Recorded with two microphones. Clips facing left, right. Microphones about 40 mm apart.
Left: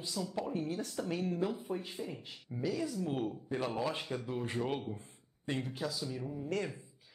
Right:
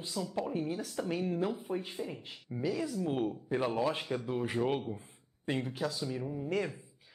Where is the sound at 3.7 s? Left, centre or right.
Centre.